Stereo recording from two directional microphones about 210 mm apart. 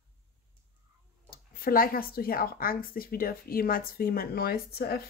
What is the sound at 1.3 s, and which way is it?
Speech, 45° left (ahead or behind).